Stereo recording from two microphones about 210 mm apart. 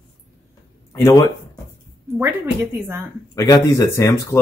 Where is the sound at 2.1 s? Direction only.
10° right (ahead or behind).